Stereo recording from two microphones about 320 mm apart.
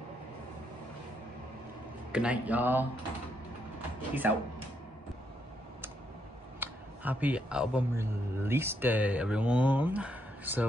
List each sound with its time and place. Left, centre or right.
2.1 s speech: centre
4.2 s speech: centre
6.6 s speech: centre